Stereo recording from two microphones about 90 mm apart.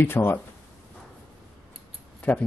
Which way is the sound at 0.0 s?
25° left (ahead or behind).